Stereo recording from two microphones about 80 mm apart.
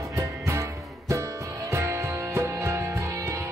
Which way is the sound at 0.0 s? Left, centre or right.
Right.